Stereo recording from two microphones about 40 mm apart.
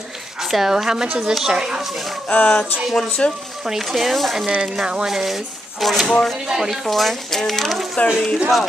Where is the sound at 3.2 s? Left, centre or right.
Left.